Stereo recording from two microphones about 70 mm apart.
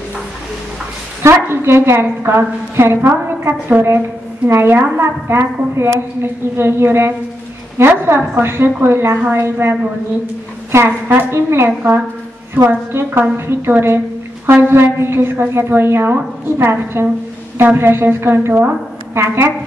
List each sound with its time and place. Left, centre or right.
1.2 s a woman's voice: right